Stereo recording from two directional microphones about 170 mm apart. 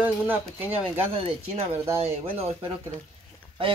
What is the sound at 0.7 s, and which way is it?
Speech, 35° right (ahead or behind).